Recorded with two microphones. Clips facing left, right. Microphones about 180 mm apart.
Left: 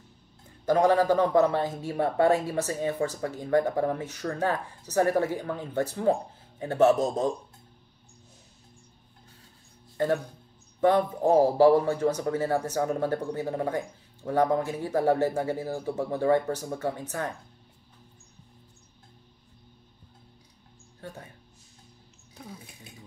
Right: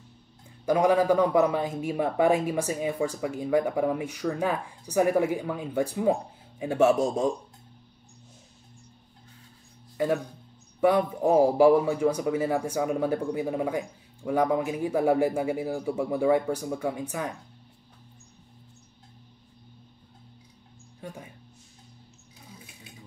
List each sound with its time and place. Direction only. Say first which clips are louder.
0.7 s a man's voice: even; 15° right (ahead or behind)
10.8 s a man's voice: even; 10° right (ahead or behind)
22.4 s a sound: left 8 dB; 65° left (ahead or behind)